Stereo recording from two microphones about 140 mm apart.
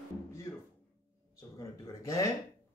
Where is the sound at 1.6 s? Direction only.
25° left (ahead or behind).